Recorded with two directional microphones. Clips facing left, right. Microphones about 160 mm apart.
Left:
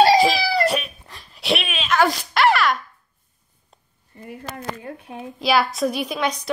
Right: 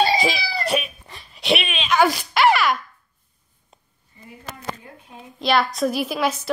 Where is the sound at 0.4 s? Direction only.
75° left (ahead or behind).